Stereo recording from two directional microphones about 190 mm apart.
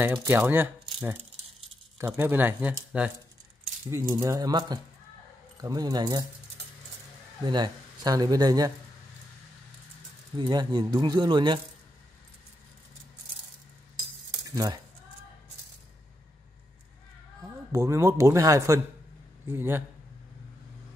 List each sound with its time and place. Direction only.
0.0 s speech: 10° right (ahead or behind)
7.4 s speech: 20° right (ahead or behind)
10.3 s speech: 20° right (ahead or behind)
14.4 s speech: 20° right (ahead or behind)
17.4 s speech: 15° right (ahead or behind)